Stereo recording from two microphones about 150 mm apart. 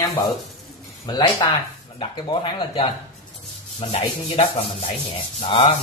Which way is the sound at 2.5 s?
35° left (ahead or behind).